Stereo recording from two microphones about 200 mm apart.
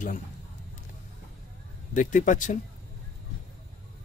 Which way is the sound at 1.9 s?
40° left (ahead or behind).